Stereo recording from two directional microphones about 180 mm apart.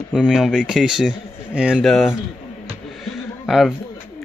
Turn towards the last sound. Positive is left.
turn(degrees=0)  # may be behind; listen again after turning